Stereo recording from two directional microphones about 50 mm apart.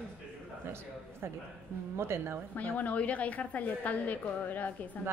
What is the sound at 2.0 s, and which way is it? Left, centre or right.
Speech, right.